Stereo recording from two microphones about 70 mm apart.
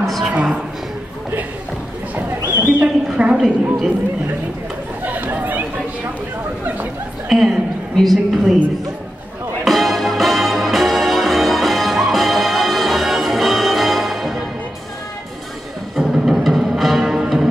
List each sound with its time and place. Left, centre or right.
0.0 s a sound: centre
2.6 s speech: centre
3.3 s a woman's voice: centre
5.0 s chatter: right
7.2 s a sound: centre
9.7 s music: centre
16.0 s music: centre